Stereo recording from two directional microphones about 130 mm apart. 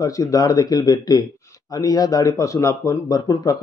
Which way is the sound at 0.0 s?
25° left (ahead or behind).